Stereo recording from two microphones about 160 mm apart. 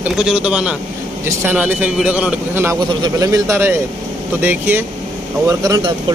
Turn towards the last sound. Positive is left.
turn(degrees=-20)  # may be behind; listen again after turning